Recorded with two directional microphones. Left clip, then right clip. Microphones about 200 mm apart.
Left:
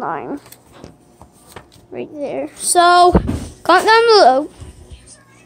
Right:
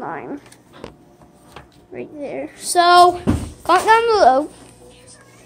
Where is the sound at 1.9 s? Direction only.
20° left (ahead or behind).